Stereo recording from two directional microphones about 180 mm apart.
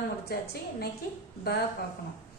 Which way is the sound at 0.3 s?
60° left (ahead or behind).